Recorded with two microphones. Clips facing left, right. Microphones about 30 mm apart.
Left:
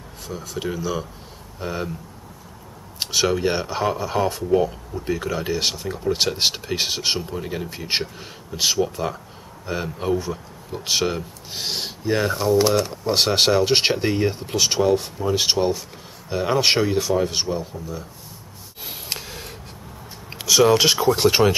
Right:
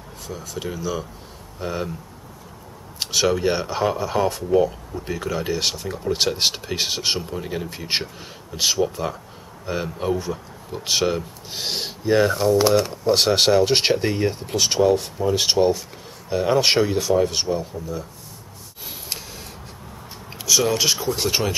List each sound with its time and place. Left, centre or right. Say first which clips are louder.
0.4 s speech: left 3 dB; centre
3.0 s speech: even; centre
18.9 s a sound: left 2 dB; centre
20.3 s speech: left 4 dB; centre